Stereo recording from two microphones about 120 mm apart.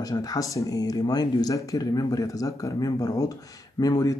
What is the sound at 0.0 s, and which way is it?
Speech, 30° left (ahead or behind).